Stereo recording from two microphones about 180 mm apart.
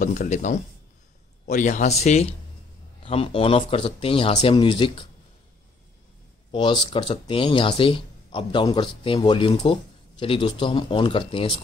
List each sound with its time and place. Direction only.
0.0 s speech: 45° left (ahead or behind)
6.5 s speech: 25° left (ahead or behind)